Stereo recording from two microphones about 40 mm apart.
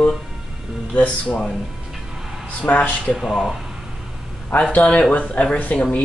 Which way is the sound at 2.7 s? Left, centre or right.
Left.